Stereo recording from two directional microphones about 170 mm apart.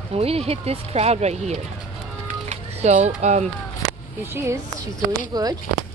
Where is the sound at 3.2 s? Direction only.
40° right (ahead or behind).